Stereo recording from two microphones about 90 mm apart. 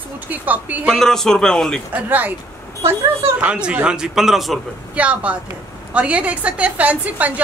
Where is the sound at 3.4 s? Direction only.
10° right (ahead or behind).